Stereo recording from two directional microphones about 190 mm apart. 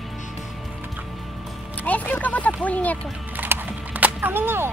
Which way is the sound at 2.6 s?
10° left (ahead or behind).